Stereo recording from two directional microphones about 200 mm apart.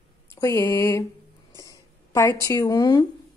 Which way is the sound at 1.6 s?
15° left (ahead or behind).